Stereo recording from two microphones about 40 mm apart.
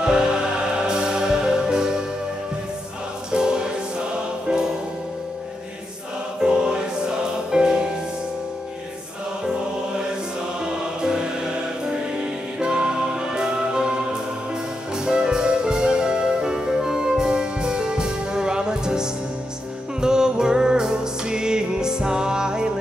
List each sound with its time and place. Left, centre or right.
0.0 s music: centre
3.3 s music: centre
6.4 s music: centre
11.0 s music: centre
12.5 s music: right
15.0 s music: centre